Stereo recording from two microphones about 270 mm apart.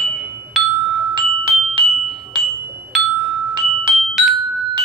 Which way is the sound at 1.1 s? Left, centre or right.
Centre.